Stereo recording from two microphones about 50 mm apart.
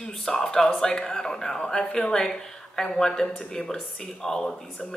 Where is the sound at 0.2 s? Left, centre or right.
Centre.